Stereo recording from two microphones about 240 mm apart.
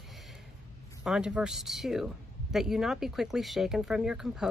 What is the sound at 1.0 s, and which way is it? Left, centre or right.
Speech, centre.